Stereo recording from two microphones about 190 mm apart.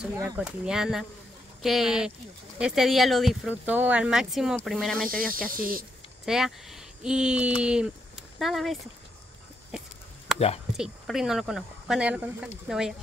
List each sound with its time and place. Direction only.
0.2 s speech: 5° right (ahead or behind)
4.9 s speech: 50° right (ahead or behind)
6.2 s speech: centre (ahead or behind)
9.7 s a sound: 5° right (ahead or behind)
10.8 s speech: centre (ahead or behind)